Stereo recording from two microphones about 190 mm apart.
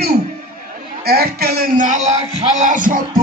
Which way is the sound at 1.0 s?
55° right (ahead or behind).